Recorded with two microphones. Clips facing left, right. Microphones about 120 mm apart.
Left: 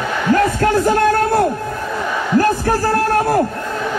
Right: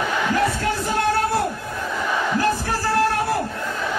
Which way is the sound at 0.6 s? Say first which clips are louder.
Left 8 dB; 50° left (ahead or behind).